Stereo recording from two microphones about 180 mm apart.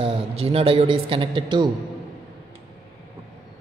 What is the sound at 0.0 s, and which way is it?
A woman's voice, 30° right (ahead or behind).